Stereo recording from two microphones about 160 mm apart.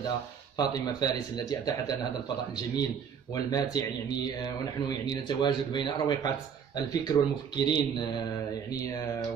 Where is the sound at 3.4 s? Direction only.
25° left (ahead or behind).